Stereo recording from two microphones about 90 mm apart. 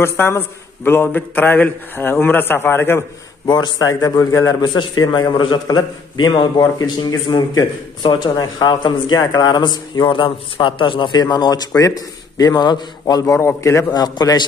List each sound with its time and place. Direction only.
0.0 s a man's voice: 25° left (ahead or behind)
3.4 s a man's voice: 50° left (ahead or behind)
4.6 s a man's voice: 55° left (ahead or behind)
5.4 s a man's voice: 55° left (ahead or behind)
7.2 s a man's voice: 55° left (ahead or behind); by 13.8 s 35° left (ahead or behind)
13.9 s a man's voice: 45° left (ahead or behind)